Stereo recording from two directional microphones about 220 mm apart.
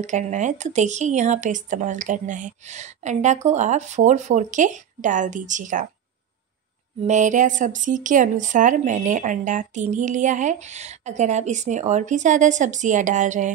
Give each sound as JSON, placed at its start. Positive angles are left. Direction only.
{"t": 0.0, "sound": "speech", "side_deg": -35}
{"t": 7.1, "sound": "speech", "side_deg": -35}